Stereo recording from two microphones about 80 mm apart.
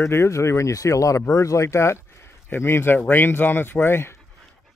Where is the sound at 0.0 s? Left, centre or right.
Left.